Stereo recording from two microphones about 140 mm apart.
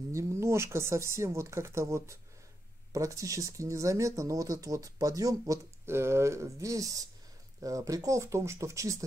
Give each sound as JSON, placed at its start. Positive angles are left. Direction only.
{"t": 0.1, "sound": "speech", "side_deg": -20}